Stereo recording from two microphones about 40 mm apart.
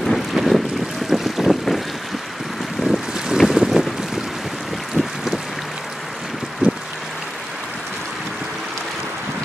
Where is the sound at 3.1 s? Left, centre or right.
Centre.